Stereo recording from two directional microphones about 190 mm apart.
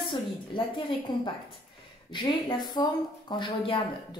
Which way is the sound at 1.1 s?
20° left (ahead or behind).